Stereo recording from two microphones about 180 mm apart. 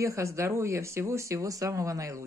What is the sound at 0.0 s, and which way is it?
Speech, 15° right (ahead or behind).